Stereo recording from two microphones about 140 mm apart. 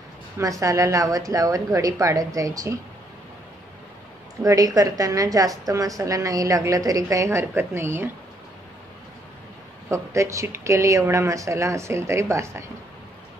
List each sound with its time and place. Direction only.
0.4 s a woman's voice: 25° right (ahead or behind)
4.4 s a woman's voice: 25° right (ahead or behind)
9.8 s a woman's voice: 20° right (ahead or behind)